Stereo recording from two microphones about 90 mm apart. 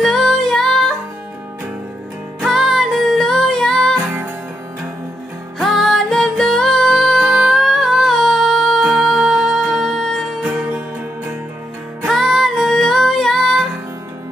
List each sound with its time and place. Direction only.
0.0 s music: centre (ahead or behind)
2.4 s music: centre (ahead or behind)
5.6 s music: centre (ahead or behind)
10.4 s music: 15° right (ahead or behind)
12.1 s music: centre (ahead or behind)